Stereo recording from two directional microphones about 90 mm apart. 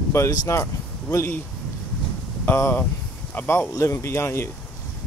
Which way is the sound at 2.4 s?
25° left (ahead or behind).